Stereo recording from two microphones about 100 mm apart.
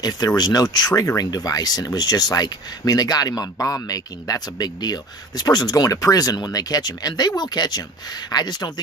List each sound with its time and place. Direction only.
0.4 s speech: 40° left (ahead or behind)